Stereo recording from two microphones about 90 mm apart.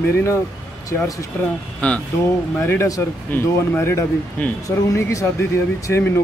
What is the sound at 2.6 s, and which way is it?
Speech, 25° left (ahead or behind).